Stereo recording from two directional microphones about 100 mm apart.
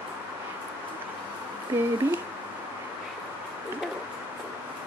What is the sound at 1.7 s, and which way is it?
Speech, 25° right (ahead or behind).